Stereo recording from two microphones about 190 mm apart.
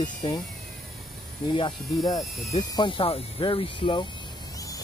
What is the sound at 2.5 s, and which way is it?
Speech, 20° left (ahead or behind).